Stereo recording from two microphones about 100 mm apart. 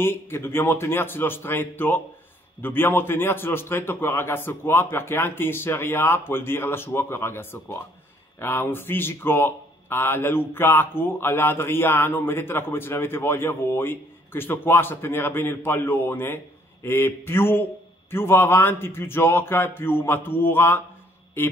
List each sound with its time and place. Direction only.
0.0 s speech: 25° left (ahead or behind)